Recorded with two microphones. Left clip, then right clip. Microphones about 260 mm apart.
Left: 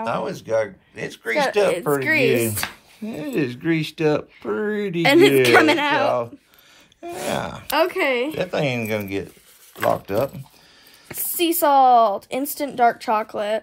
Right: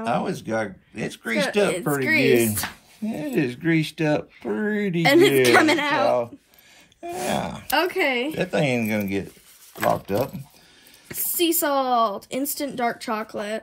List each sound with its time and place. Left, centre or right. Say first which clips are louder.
0.0 s speech: even; centre
1.7 s speech: left 3 dB; left
3.1 s speech: even; centre
5.0 s speech: left 2 dB; left
7.0 s speech: even; left
8.4 s speech: even; centre